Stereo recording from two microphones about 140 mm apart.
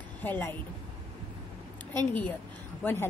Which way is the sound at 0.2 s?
15° left (ahead or behind).